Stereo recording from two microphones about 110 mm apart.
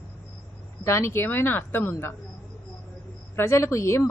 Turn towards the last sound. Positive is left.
turn(degrees=25)  # may be behind; listen again after turning